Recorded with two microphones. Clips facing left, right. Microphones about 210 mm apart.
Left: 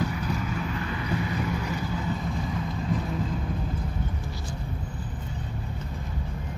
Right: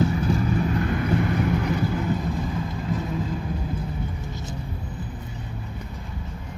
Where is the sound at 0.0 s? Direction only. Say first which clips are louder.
Right 7 dB; 30° right (ahead or behind); by 1.7 s 55° right (ahead or behind).